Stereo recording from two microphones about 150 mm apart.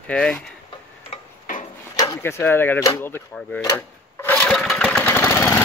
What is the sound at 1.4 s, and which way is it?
Tick-tock, 60° left (ahead or behind).